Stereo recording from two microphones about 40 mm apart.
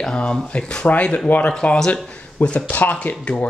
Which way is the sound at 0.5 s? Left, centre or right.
Left.